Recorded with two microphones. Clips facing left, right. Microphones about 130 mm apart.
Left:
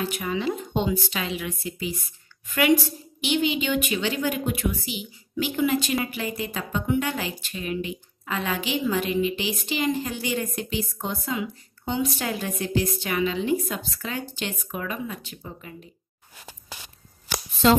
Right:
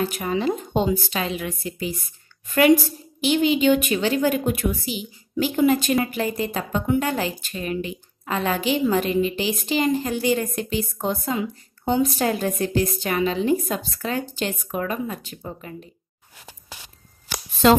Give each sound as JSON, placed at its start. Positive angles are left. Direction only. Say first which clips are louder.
{"t": 0.0, "sound": "speech", "louder": "right 4 dB", "side_deg": -45}